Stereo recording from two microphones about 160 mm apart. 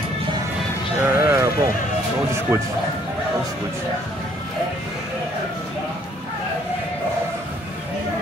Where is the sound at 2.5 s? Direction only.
15° right (ahead or behind).